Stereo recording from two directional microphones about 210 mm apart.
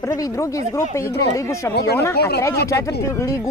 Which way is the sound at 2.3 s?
15° left (ahead or behind).